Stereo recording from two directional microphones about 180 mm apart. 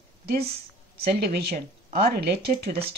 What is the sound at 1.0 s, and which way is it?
Speech, 60° right (ahead or behind).